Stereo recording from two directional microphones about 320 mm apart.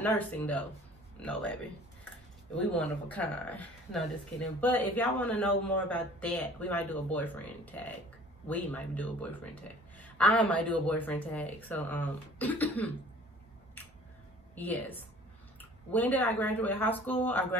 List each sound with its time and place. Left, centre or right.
0.0 s speech: centre
14.5 s speech: centre